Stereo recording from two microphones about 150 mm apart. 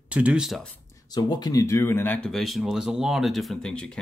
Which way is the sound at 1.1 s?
30° left (ahead or behind).